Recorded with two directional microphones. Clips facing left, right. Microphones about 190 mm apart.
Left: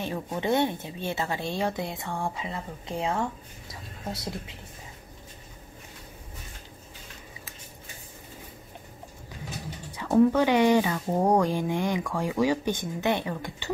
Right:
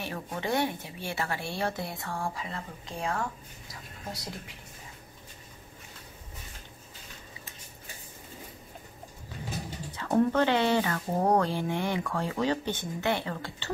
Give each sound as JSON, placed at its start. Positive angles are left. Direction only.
{"t": 0.0, "sound": "a woman's voice", "side_deg": 20}
{"t": 9.9, "sound": "speech", "side_deg": 10}